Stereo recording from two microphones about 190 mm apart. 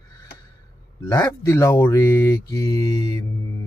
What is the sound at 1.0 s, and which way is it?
Mantra, 15° left (ahead or behind).